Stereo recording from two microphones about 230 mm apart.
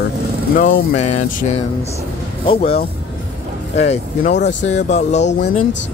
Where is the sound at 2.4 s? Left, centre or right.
Left.